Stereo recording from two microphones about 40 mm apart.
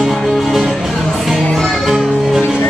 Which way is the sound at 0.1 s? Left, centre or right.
Centre.